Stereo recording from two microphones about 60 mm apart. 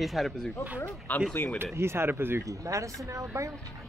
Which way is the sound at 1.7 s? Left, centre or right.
Right.